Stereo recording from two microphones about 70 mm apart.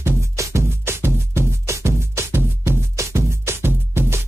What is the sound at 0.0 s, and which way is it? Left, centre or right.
Music, right.